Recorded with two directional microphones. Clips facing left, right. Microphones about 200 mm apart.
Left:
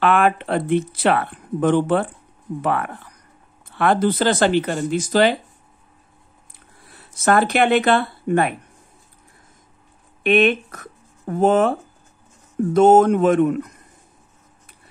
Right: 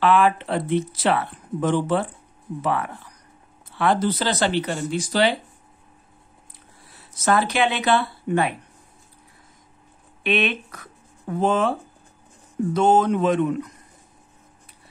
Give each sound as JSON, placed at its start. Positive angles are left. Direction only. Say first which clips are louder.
{"t": 0.0, "sound": "speech", "louder": "left 1 dB", "side_deg": 55}
{"t": 7.0, "sound": "speech", "louder": "left 3 dB", "side_deg": 55}
{"t": 10.2, "sound": "speech", "louder": "left 7 dB", "side_deg": 50}